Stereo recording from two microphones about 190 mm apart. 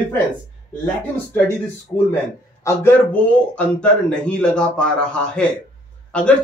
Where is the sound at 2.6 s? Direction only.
15° left (ahead or behind).